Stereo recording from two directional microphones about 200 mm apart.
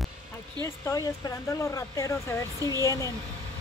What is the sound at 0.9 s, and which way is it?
Speech, 20° left (ahead or behind).